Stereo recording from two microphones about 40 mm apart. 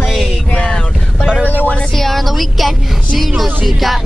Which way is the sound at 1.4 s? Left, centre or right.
Right.